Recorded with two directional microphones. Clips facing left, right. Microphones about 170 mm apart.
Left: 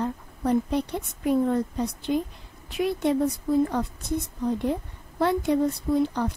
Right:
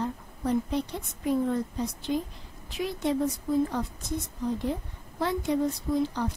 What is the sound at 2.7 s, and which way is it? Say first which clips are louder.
Speech: left 5 dB; 60° left (ahead or behind).